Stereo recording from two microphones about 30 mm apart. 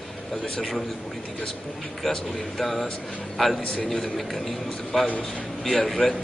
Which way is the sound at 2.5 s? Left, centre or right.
Centre.